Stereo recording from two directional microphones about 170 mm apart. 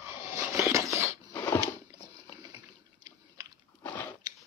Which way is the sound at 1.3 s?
15° left (ahead or behind).